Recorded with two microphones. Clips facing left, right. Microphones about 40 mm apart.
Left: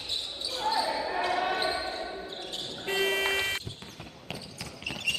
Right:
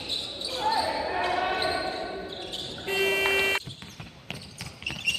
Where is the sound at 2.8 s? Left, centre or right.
Centre.